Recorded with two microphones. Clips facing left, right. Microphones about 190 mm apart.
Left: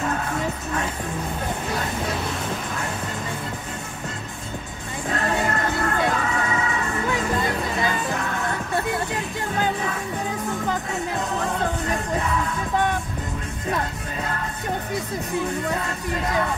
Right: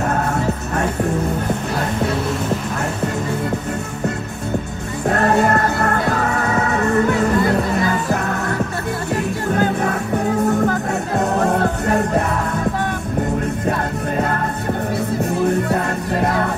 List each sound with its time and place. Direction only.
0.1 s music: 40° right (ahead or behind)
5.0 s music: 60° right (ahead or behind)
5.8 s music: 40° right (ahead or behind)
11.5 s music: 60° right (ahead or behind)
13.7 s music: 55° right (ahead or behind)
15.7 s music: 55° right (ahead or behind)